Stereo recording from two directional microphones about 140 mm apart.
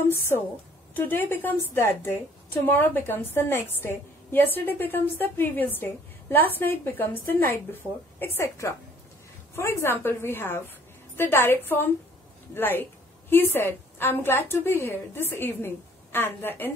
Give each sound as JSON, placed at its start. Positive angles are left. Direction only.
{"t": 0.9, "sound": "a woman's voice", "side_deg": 15}